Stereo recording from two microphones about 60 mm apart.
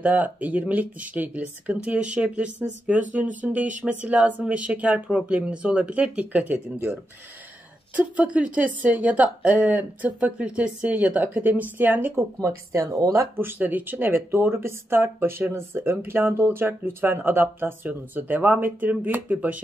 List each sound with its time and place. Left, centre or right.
0.0 s speech: right
7.9 s speech: right
12.4 s speech: right
13.4 s speech: right